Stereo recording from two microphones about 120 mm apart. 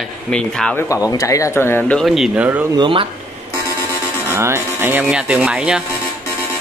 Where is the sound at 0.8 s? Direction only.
25° left (ahead or behind); by 2.1 s 10° left (ahead or behind).